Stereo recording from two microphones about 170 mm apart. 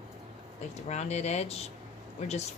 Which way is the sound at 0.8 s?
40° left (ahead or behind).